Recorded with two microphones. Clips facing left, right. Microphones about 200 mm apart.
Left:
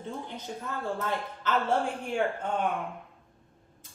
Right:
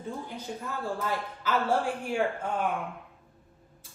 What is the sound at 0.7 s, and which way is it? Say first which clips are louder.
Speech: even; 5° right (ahead or behind).